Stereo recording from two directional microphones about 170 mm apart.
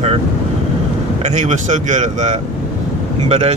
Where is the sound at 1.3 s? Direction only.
45° right (ahead or behind).